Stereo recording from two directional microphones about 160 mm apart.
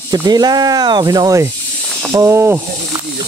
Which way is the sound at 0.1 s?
25° right (ahead or behind).